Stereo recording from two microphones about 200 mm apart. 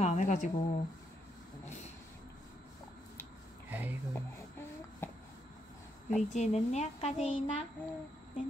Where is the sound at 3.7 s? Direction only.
10° right (ahead or behind).